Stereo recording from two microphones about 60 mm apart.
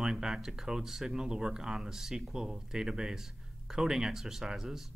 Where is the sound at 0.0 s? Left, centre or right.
Centre.